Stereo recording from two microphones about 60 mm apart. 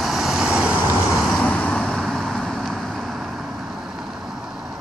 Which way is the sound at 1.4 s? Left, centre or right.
Left.